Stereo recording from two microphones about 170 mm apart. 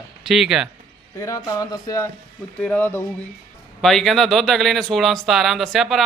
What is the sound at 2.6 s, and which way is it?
Speech, 10° left (ahead or behind).